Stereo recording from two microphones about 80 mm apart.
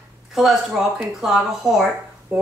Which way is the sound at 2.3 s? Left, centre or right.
Right.